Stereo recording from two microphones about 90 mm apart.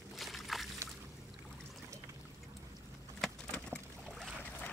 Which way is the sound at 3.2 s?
5° left (ahead or behind).